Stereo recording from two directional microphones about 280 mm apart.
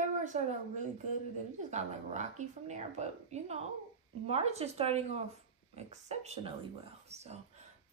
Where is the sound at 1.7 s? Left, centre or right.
Right.